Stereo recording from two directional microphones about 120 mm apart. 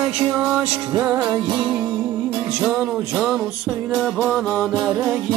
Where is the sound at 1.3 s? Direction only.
40° right (ahead or behind).